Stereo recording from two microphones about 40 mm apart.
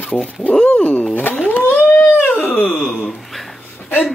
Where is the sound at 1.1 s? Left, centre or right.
Left.